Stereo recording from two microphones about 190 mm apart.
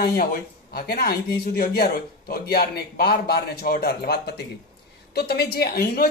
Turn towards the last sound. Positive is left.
turn(degrees=55)  # may be behind; listen again after turning